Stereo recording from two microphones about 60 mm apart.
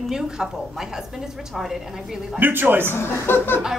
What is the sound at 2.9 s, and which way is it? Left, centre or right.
Speech, left.